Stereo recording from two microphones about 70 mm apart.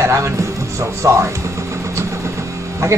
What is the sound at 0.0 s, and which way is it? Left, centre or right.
Speech, right.